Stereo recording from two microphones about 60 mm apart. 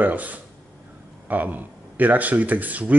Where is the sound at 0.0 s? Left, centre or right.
Right.